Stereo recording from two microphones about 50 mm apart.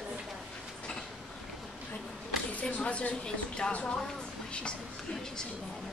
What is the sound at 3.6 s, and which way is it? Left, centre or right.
Speech, centre.